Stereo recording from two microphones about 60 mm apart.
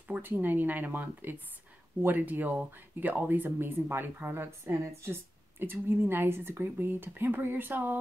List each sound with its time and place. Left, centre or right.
0.1 s a woman's voice: right